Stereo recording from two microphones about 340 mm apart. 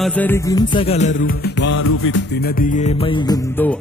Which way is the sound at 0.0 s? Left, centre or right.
Centre.